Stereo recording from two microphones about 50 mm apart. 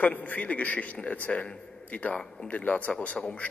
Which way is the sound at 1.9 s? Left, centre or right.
Left.